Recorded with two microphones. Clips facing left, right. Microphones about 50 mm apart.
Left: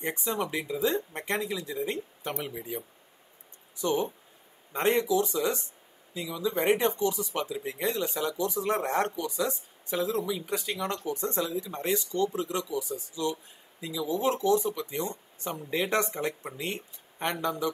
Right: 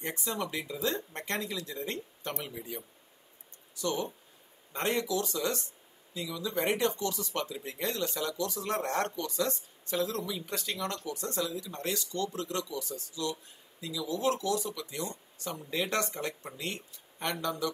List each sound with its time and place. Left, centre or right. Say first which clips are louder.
0.0 s speech: left 4 dB; centre